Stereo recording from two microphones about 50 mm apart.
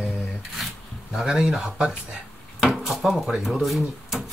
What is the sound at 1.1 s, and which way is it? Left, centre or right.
Speech, centre.